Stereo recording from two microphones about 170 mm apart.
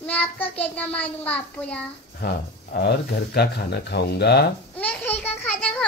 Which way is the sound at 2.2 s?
70° left (ahead or behind).